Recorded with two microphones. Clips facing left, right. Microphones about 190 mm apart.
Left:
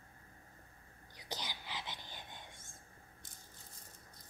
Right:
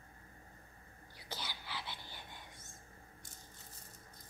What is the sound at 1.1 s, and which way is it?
Whispering, 20° left (ahead or behind).